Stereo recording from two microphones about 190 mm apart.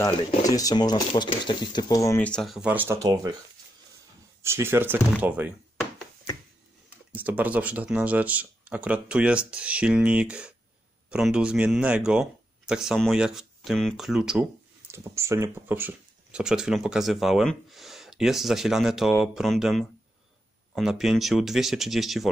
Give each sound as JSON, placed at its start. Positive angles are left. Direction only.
{"t": 0.0, "sound": "speech", "side_deg": 20}
{"t": 4.4, "sound": "speech", "side_deg": -15}
{"t": 7.1, "sound": "speech", "side_deg": -10}
{"t": 14.9, "sound": "speech", "side_deg": -15}